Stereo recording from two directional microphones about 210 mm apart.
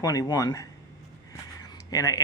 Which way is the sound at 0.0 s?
15° left (ahead or behind).